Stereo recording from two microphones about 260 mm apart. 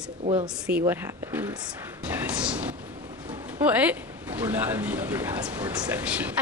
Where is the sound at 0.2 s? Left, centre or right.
Right.